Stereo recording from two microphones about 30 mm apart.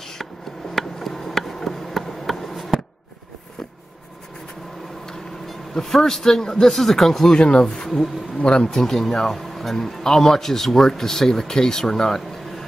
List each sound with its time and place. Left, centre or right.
0.7 s a sound: centre
5.8 s a man's voice: centre
7.3 s speech: left
8.7 s a man's voice: centre